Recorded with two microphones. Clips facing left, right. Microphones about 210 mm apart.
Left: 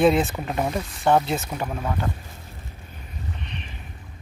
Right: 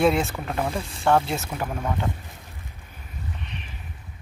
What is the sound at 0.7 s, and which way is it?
Speech, 30° right (ahead or behind).